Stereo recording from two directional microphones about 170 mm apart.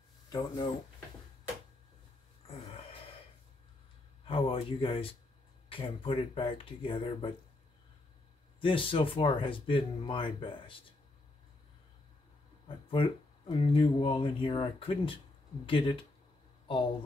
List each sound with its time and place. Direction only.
0.3 s speech: 25° left (ahead or behind)
2.4 s a sound: 35° left (ahead or behind)
4.3 s speech: 30° left (ahead or behind)
8.5 s speech: 30° left (ahead or behind)
12.6 s speech: 30° left (ahead or behind)